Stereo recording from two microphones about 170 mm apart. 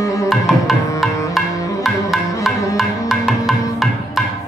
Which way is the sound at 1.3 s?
Centre (ahead or behind).